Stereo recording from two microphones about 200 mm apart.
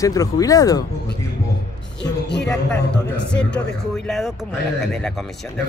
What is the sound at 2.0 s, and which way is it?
Music, 60° left (ahead or behind).